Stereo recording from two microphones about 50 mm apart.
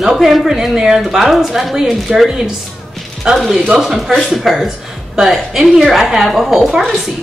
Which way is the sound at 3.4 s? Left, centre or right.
Centre.